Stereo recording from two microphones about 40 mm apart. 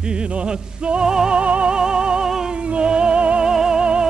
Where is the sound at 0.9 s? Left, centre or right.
Centre.